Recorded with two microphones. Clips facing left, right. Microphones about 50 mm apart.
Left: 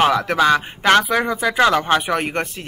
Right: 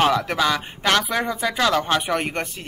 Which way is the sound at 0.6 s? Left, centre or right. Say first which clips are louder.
Left 6 dB; left.